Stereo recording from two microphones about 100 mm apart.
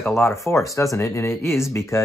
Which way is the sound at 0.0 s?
25° left (ahead or behind).